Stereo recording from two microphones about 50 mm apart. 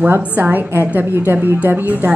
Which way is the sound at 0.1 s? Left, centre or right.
Right.